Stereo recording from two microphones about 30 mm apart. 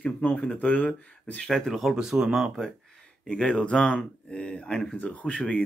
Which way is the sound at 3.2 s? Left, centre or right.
Left.